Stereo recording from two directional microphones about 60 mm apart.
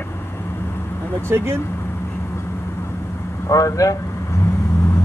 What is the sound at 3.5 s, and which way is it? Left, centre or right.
Speech, left.